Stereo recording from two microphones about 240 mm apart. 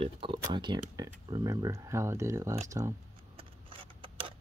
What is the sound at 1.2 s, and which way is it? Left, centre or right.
Speech, centre.